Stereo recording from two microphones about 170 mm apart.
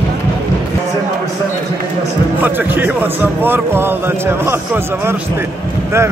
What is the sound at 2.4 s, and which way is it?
Speech, 10° right (ahead or behind).